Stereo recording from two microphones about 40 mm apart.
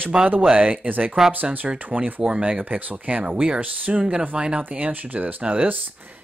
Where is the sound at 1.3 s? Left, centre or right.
Right.